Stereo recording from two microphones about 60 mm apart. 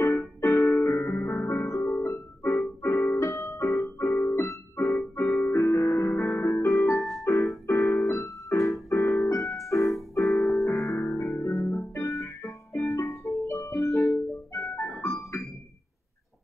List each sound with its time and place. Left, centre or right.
0.4 s music: left
1.9 s music: left
7.6 s keyboard: left
10.1 s music: left